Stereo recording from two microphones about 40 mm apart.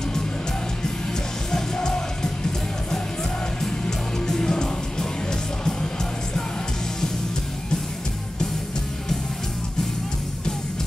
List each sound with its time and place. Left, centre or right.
1.5 s music: centre
4.3 s music: centre